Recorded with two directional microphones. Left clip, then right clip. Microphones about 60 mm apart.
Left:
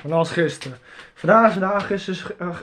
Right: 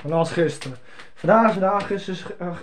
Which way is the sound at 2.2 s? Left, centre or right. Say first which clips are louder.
Left 2 dB; left.